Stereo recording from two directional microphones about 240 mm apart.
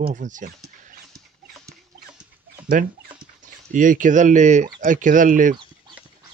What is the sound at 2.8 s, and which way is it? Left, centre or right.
Speech, right.